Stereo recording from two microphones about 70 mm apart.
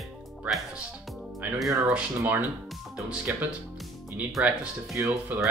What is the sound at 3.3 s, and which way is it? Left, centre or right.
Speech, right.